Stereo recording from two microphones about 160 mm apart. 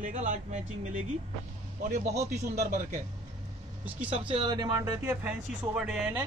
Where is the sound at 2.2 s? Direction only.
45° right (ahead or behind).